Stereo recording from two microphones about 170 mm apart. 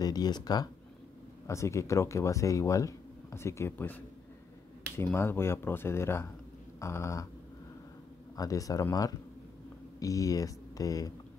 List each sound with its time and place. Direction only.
0.0 s speech: 25° left (ahead or behind)
8.4 s speech: 20° left (ahead or behind)